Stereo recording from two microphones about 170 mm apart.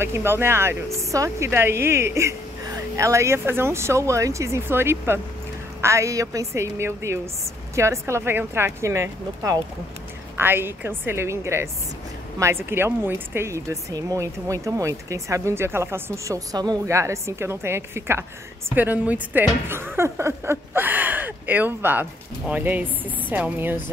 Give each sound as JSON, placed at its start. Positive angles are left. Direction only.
{"t": 0.0, "sound": "speech", "side_deg": -15}